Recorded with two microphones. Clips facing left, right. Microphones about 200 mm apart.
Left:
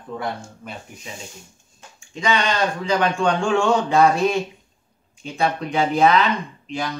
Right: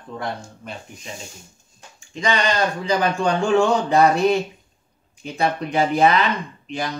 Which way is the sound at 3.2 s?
35° right (ahead or behind).